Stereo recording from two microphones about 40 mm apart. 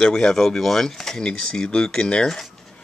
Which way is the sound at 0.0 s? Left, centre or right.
Centre.